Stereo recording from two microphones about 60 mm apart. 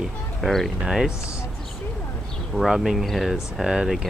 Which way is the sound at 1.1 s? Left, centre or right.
Left.